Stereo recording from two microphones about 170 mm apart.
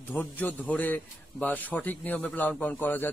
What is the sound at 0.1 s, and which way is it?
Speech, 10° left (ahead or behind).